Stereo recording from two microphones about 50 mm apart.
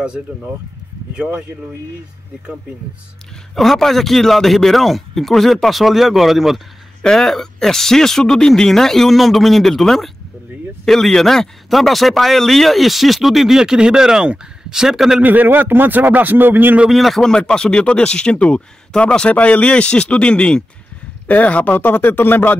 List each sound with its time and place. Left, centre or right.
1.1 s speech: right
3.5 s speech: centre
7.0 s speech: centre
15.2 s a man's voice: right
16.9 s speech: centre
17.3 s speech: centre
21.3 s speech: left
21.7 s speech: left